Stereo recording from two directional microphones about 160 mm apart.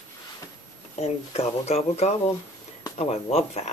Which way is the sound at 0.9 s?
45° left (ahead or behind).